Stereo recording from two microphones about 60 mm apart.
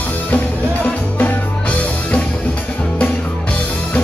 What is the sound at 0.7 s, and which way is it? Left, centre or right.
Music, left.